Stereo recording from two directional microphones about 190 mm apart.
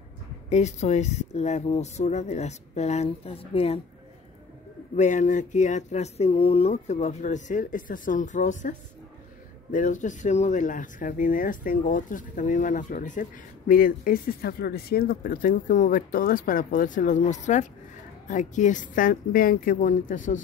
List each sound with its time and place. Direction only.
0.5 s speech: 35° left (ahead or behind)
4.9 s speech: 40° left (ahead or behind)